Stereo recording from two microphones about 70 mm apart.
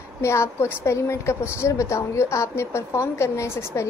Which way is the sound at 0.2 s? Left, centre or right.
Left.